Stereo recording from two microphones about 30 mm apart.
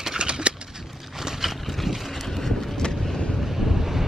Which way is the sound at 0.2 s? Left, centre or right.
Right.